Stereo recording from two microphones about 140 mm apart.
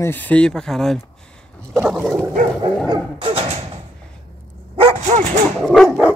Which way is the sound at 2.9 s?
35° right (ahead or behind).